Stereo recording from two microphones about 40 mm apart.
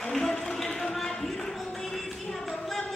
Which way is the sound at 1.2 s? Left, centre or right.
Centre.